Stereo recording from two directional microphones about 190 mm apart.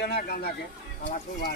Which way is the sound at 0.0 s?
55° left (ahead or behind).